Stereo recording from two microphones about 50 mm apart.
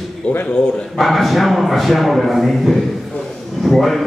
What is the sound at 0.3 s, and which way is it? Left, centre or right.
Speech, left.